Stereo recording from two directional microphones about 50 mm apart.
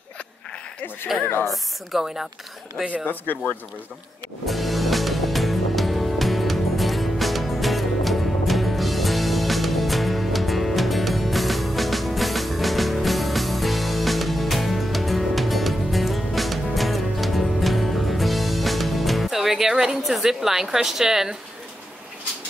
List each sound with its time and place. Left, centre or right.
1.5 s a woman's voice: centre
3.1 s speech: left
4.5 s music: centre